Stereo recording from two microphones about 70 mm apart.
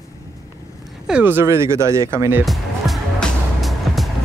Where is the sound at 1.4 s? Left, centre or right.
Right.